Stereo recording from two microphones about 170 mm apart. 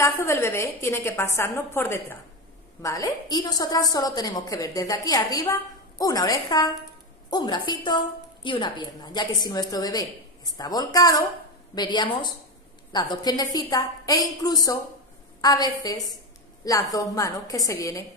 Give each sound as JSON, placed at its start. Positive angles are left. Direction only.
{"t": 0.0, "sound": "a woman's voice", "side_deg": 15}